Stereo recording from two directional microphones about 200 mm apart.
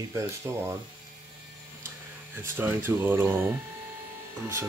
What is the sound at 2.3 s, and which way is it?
Speech, 10° right (ahead or behind).